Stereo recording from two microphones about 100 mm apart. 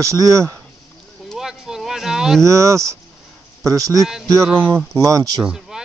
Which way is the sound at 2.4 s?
30° right (ahead or behind).